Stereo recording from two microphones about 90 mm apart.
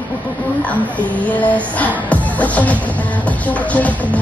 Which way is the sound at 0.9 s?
15° left (ahead or behind).